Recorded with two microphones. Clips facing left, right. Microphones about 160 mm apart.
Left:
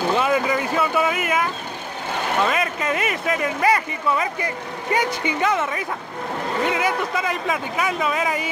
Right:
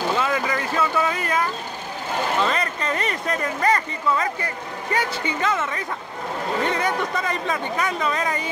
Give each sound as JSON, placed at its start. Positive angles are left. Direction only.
{"t": 0.1, "sound": "speech", "side_deg": 20}